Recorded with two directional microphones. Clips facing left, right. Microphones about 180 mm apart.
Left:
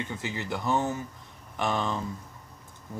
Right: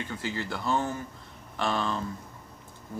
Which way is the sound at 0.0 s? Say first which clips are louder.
Right 1 dB; 20° left (ahead or behind).